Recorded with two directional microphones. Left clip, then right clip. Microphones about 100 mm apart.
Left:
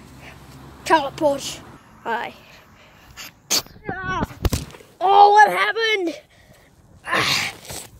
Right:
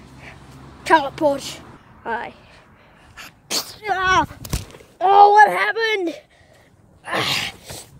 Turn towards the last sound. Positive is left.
turn(degrees=5)  # may be behind; listen again after turning